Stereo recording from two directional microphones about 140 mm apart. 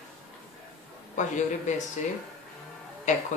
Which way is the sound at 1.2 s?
60° left (ahead or behind).